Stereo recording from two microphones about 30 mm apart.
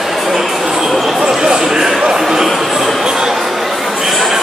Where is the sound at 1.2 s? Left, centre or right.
Right.